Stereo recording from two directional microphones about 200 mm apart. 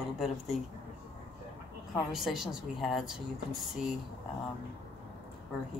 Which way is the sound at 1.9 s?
Centre (ahead or behind).